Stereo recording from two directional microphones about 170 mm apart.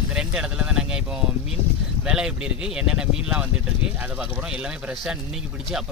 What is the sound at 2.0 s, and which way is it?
Speech, 5° right (ahead or behind).